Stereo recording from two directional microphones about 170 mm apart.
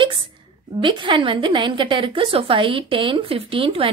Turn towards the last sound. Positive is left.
turn(degrees=-30)  # may be behind; listen again after turning